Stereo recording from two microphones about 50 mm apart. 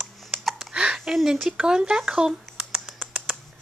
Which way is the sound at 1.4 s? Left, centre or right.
Centre.